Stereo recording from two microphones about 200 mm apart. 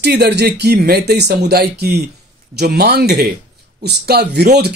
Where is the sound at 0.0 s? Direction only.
55° right (ahead or behind).